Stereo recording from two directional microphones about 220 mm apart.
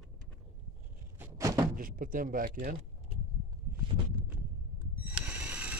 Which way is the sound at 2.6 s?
35° right (ahead or behind).